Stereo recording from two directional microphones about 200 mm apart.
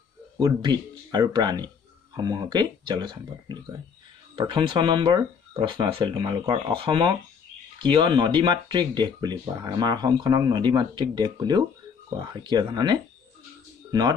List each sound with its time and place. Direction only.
0.4 s speech: 20° right (ahead or behind)